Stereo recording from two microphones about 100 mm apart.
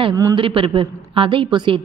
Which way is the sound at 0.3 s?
60° right (ahead or behind).